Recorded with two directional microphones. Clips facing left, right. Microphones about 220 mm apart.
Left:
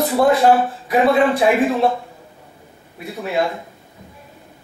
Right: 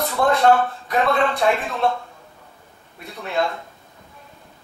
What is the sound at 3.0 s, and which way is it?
Speech, centre (ahead or behind).